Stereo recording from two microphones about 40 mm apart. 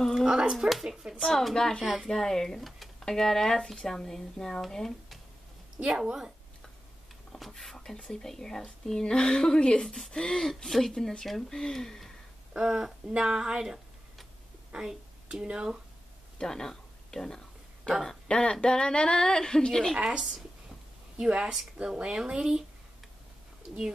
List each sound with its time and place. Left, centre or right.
0.5 s speech: centre
0.8 s speech: centre
1.2 s speech: centre
1.8 s a woman's voice: centre
2.0 s speech: centre
5.8 s speech: right
7.3 s speech: centre
9.0 s speech: left
12.5 s a woman's voice: centre
16.3 s a sound: centre
17.9 s speech: left
20.0 s a woman's voice: centre